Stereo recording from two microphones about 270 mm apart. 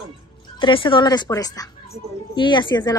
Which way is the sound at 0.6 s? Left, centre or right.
Centre.